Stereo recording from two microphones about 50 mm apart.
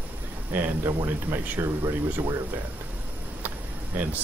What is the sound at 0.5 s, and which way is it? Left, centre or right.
Speech, right.